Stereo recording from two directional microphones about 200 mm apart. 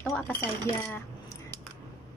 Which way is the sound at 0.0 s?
5° left (ahead or behind).